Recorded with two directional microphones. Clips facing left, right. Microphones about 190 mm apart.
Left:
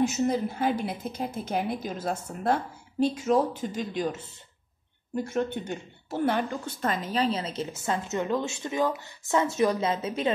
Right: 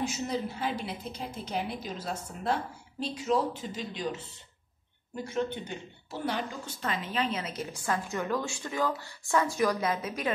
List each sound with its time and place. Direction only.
0.0 s a woman's voice: 55° left (ahead or behind); by 10.3 s 25° left (ahead or behind)